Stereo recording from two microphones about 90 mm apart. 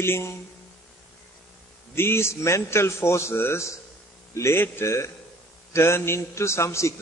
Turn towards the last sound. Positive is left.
turn(degrees=30)  # may be behind; listen again after turning